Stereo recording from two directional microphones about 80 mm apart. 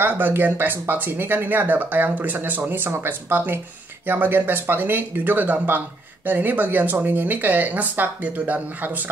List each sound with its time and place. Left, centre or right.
0.0 s speech: right